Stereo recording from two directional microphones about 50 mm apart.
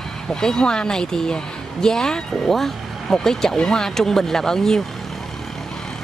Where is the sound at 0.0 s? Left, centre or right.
Centre.